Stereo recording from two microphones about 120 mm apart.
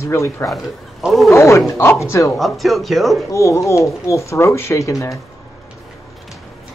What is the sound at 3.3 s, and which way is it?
Speech, 25° left (ahead or behind).